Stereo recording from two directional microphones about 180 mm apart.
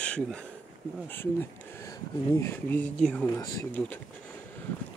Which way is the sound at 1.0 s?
10° left (ahead or behind).